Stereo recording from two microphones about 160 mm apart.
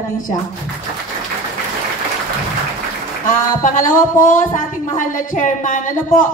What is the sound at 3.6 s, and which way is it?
Speech, 55° left (ahead or behind).